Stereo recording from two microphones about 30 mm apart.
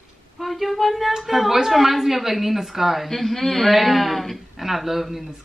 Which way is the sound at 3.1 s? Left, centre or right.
Centre.